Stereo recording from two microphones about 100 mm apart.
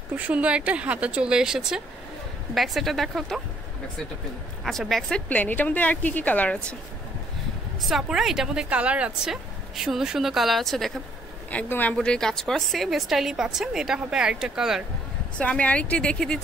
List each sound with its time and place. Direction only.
0.1 s a woman's voice: 15° right (ahead or behind)
4.6 s speech: centre (ahead or behind)
5.3 s a woman's voice: 15° left (ahead or behind)
7.8 s speech: 5° right (ahead or behind)
11.5 s speech: 15° left (ahead or behind); by 14.9 s 5° right (ahead or behind)
15.3 s a woman's voice: 15° left (ahead or behind)